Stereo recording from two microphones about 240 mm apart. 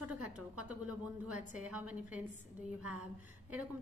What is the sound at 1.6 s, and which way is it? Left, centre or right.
Speech, centre.